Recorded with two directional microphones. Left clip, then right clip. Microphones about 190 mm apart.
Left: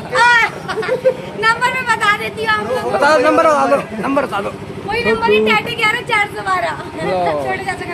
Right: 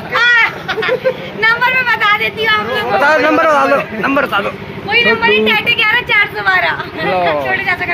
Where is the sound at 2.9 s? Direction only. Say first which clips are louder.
Right 1 dB; 10° right (ahead or behind); by 7.1 s 15° left (ahead or behind).